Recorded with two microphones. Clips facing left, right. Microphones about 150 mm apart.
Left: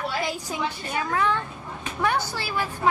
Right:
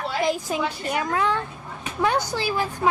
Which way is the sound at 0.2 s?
15° right (ahead or behind).